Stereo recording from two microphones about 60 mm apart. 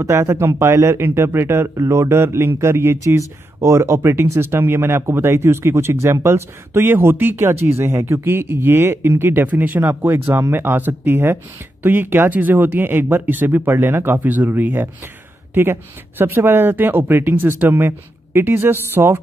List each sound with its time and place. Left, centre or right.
0.0 s speech: right
1.8 s speech: right
3.0 s speech: right
6.8 s speech: right
14.2 s speech: right